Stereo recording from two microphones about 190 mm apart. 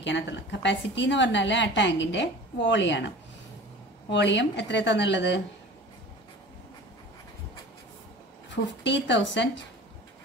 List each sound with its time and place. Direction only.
0.0 s a woman's voice: 70° left (ahead or behind)
4.1 s a woman's voice: 70° left (ahead or behind)
8.5 s a woman's voice: 70° left (ahead or behind)